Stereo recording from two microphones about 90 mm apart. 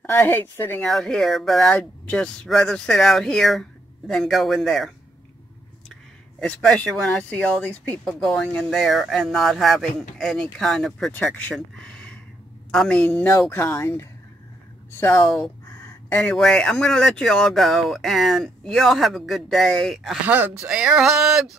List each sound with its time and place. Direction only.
0.1 s speech: 25° left (ahead or behind)
0.8 s speech: 5° left (ahead or behind)
6.4 s speech: 10° left (ahead or behind)
8.1 s speech: 5° left (ahead or behind)
11.8 s a sound: 15° left (ahead or behind)
12.7 s speech: 5° left (ahead or behind)
13.0 s speech: 15° left (ahead or behind)
16.2 s speech: 5° left (ahead or behind)
20.2 s speech: 20° right (ahead or behind)
20.6 s a sound: 10° right (ahead or behind)